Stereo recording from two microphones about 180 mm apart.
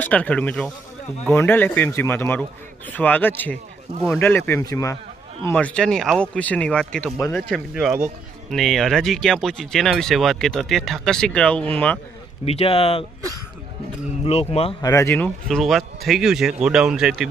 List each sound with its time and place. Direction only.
0.0 s a man's voice: 10° left (ahead or behind)
5.5 s speech: 5° left (ahead or behind)
12.4 s speech: 35° left (ahead or behind)
14.2 s speech: 35° left (ahead or behind)
14.8 s speech: 15° left (ahead or behind); by 17.3 s 5° right (ahead or behind)